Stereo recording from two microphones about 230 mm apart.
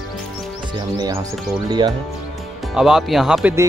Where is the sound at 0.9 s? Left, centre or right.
Centre.